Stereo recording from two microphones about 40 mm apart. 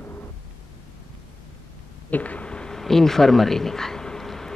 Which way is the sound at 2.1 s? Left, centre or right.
Left.